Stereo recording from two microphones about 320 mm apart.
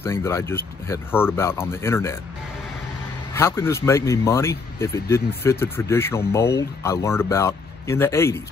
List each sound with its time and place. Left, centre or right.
0.0 s speech: centre
3.3 s speech: centre